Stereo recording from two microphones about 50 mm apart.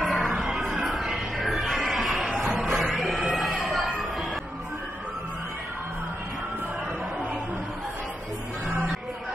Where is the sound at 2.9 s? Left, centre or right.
Centre.